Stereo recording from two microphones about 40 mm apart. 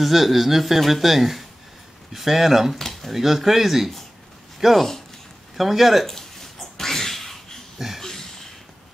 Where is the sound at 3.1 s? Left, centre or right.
Centre.